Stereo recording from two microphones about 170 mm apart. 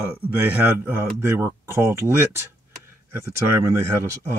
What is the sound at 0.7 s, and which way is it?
Speech, 15° right (ahead or behind).